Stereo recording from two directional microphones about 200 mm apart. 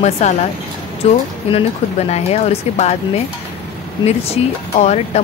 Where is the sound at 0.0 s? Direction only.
35° left (ahead or behind).